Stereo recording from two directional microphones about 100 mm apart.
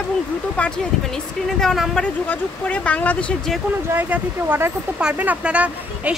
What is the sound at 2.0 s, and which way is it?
Speech, 10° left (ahead or behind).